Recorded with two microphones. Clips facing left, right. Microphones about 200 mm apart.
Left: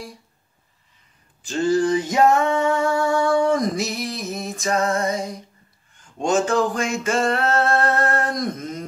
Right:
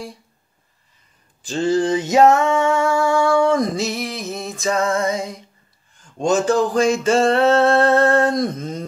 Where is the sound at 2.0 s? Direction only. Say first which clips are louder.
Right 8 dB; 90° right.